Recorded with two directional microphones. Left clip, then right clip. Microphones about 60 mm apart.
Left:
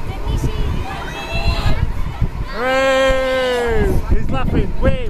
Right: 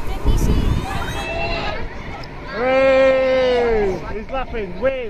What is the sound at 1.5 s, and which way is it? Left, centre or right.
Run, left.